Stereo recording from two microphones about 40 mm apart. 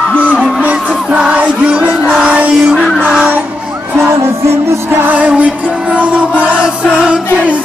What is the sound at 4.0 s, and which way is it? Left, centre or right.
Music, right.